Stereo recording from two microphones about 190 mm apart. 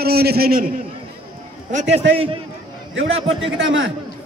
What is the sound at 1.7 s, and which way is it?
Speech, 40° right (ahead or behind).